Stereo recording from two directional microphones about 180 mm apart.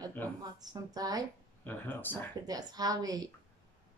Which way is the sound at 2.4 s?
20° right (ahead or behind).